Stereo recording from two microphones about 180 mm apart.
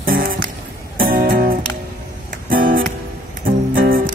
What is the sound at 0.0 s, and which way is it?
Music, 50° right (ahead or behind).